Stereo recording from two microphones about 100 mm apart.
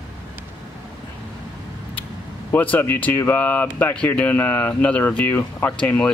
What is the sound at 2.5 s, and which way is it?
Speech, 20° left (ahead or behind).